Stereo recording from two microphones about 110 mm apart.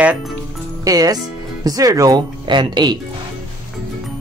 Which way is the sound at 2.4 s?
45° right (ahead or behind).